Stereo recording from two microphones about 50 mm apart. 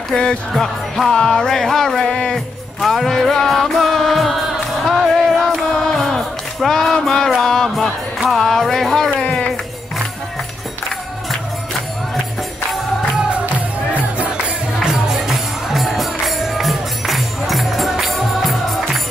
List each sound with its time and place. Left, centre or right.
0.1 s music: centre
0.5 s music: centre
9.2 s a sound: left
13.9 s music: right
14.8 s music: centre